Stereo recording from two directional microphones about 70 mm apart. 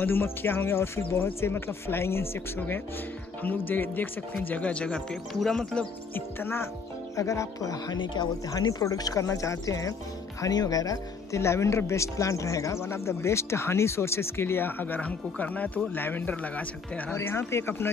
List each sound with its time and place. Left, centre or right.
0.0 s speech: left; by 5.9 s centre
6.1 s speech: left
7.2 s speech: left
8.5 s speech: left
10.5 s speech: left
11.4 s speech: left
17.1 s speech: left